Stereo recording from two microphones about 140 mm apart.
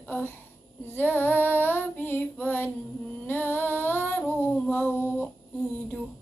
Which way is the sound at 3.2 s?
15° left (ahead or behind).